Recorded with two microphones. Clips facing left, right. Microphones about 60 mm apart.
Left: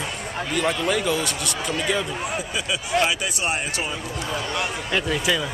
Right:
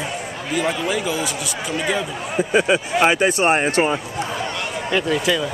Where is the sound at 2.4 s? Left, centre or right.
Right.